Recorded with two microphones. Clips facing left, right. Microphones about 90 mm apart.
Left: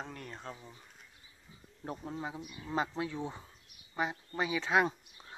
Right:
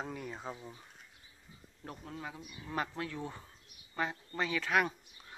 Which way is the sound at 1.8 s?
25° left (ahead or behind).